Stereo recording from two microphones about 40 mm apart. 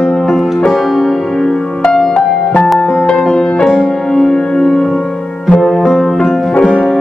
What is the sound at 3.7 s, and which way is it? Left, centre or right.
Music, centre.